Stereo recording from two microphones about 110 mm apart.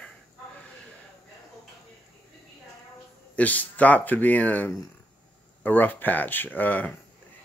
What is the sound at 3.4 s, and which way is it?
Speech, 15° left (ahead or behind).